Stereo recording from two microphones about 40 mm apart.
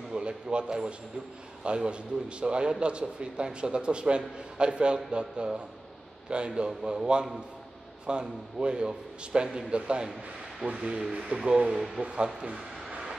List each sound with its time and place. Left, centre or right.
0.1 s a man's voice: right
11.7 s speech: centre